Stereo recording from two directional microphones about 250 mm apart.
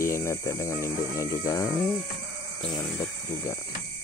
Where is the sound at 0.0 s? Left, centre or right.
Centre.